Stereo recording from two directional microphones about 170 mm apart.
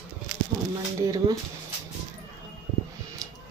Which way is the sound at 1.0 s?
20° right (ahead or behind).